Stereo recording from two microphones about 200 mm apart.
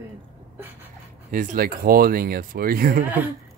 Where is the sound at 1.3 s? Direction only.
40° right (ahead or behind).